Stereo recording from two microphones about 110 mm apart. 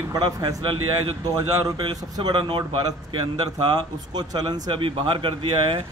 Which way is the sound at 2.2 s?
45° right (ahead or behind).